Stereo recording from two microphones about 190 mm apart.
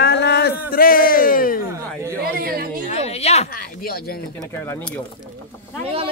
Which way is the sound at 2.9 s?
35° left (ahead or behind).